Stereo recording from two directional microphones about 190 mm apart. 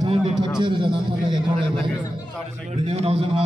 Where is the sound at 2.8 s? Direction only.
35° right (ahead or behind).